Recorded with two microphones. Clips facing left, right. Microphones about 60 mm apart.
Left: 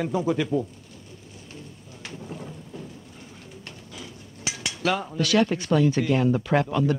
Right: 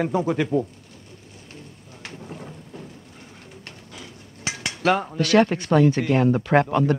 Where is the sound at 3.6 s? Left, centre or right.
Right.